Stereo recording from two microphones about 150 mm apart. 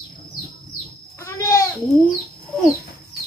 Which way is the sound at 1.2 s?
20° left (ahead or behind).